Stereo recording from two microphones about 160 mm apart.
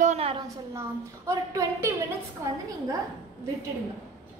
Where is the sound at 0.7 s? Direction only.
20° right (ahead or behind).